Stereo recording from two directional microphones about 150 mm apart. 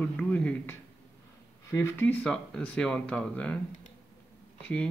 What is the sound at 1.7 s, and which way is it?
Speech, 15° left (ahead or behind).